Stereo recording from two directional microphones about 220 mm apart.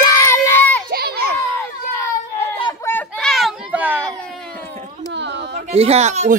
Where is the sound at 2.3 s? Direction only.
25° left (ahead or behind).